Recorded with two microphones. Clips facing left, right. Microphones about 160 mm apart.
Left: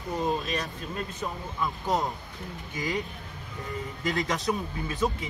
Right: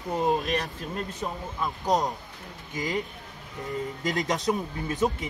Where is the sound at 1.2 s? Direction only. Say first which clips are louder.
Left 1 dB; 20° right (ahead or behind).